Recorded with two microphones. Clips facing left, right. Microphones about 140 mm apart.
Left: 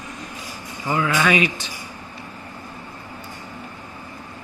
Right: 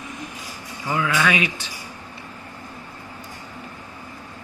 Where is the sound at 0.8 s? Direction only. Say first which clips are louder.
Left 2 dB; 5° left (ahead or behind).